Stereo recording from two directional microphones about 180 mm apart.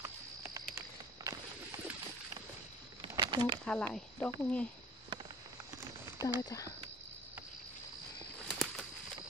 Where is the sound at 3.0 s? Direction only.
25° right (ahead or behind).